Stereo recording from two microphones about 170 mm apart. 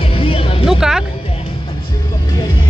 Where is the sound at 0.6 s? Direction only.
5° right (ahead or behind).